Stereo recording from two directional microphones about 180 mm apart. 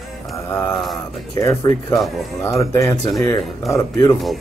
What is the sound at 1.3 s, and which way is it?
Speech, 20° left (ahead or behind).